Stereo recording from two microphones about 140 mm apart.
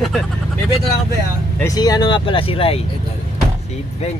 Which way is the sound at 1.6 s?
25° left (ahead or behind).